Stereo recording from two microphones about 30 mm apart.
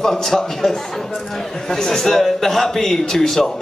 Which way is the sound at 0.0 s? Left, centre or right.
Centre.